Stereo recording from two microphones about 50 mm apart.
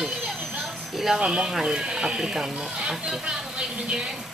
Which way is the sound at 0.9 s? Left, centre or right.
Centre.